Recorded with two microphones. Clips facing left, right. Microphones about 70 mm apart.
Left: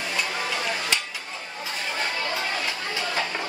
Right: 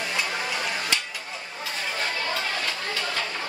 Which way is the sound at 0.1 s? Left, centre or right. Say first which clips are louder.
Left 3 dB; centre.